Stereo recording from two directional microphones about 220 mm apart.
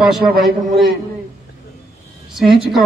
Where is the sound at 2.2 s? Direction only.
Centre (ahead or behind).